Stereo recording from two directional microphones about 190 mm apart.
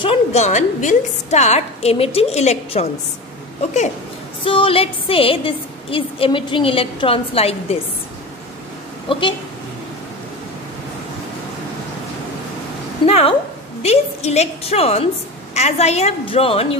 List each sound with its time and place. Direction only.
0.0 s a woman's voice: 30° left (ahead or behind)
4.5 s a woman's voice: 30° left (ahead or behind)
13.0 s a woman's voice: 30° left (ahead or behind)